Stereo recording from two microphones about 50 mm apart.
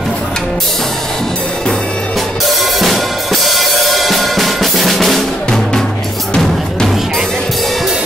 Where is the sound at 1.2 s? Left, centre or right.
Centre.